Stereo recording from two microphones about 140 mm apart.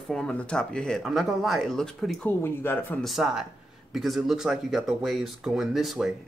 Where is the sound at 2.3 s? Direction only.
15° left (ahead or behind).